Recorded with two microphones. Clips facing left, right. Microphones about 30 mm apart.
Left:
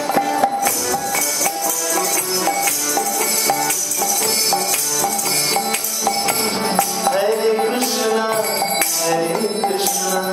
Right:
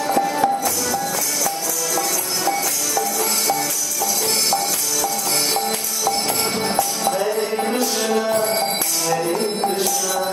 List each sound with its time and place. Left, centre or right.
0.2 s music: centre
7.1 s music: left
7.5 s music: centre
9.2 s music: centre